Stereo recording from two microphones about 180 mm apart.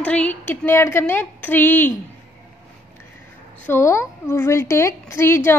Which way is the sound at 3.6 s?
15° left (ahead or behind).